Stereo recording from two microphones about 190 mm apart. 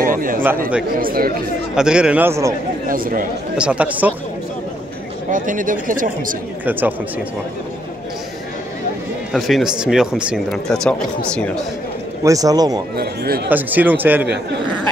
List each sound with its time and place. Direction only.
0.0 s a sound: 45° right (ahead or behind)
0.9 s speech: 50° right (ahead or behind)
1.8 s speech: 5° right (ahead or behind)
2.9 s speech: 50° right (ahead or behind)
3.5 s speech: 5° right (ahead or behind)
5.3 s speech: 45° right (ahead or behind)
6.6 s speech: 10° right (ahead or behind)
9.3 s speech: centre (ahead or behind)
12.2 s speech: 20° right (ahead or behind)
12.9 s speech: 55° right (ahead or behind)
13.5 s speech: 10° right (ahead or behind)